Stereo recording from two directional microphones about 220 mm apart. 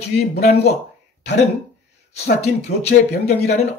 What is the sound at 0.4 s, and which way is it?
Speech, 30° left (ahead or behind).